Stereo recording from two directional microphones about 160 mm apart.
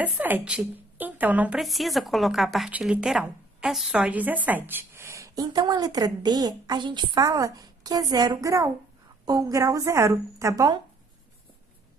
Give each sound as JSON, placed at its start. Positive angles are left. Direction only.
{"t": 0.0, "sound": "a woman's voice", "side_deg": -10}